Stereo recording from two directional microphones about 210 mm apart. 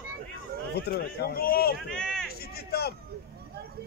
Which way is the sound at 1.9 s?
5° left (ahead or behind).